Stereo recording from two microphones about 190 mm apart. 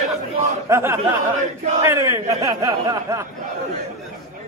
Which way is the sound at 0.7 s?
15° right (ahead or behind).